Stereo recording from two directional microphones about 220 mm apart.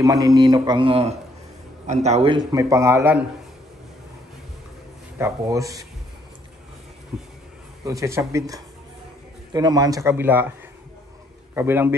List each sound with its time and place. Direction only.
0.0 s a man's voice: 15° right (ahead or behind)
5.2 s a man's voice: 15° right (ahead or behind)
7.8 s a man's voice: 15° right (ahead or behind)
11.5 s a man's voice: 10° right (ahead or behind)